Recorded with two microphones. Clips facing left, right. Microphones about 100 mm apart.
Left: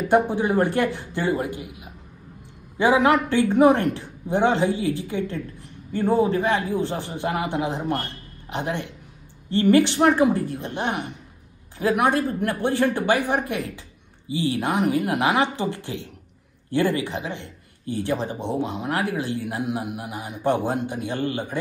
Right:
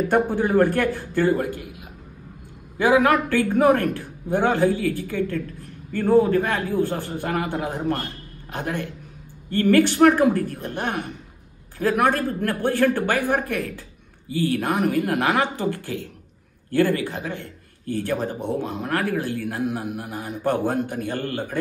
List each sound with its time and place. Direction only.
0.1 s speech: 20° left (ahead or behind)
2.8 s a woman's voice: 20° left (ahead or behind)